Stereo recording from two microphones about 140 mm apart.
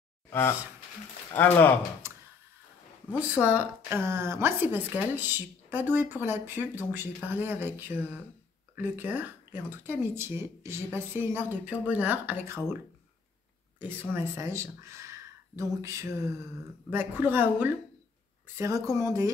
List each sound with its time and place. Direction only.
1.3 s speech: 15° left (ahead or behind)
2.0 s a sound: 20° right (ahead or behind)
3.1 s speech: 10° right (ahead or behind)
14.1 s speech: 15° right (ahead or behind)